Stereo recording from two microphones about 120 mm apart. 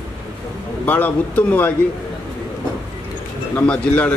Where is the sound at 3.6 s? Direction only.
10° left (ahead or behind).